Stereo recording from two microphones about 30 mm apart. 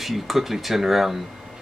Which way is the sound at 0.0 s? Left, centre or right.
Centre.